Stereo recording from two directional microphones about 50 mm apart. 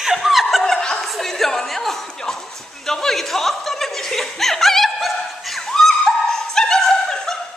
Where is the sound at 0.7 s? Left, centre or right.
Centre.